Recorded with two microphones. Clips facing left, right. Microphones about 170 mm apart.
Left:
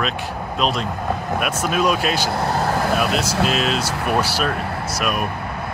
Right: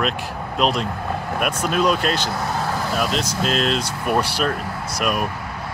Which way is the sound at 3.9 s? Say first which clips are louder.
Left 1 dB; 75° left (ahead or behind).